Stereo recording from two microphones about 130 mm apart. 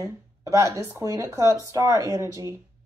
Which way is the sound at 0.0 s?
25° right (ahead or behind).